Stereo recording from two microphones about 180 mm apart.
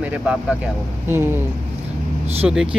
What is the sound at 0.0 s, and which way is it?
Speech, 5° right (ahead or behind).